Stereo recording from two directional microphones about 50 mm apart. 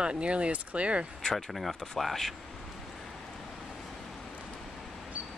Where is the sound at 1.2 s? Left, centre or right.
Centre.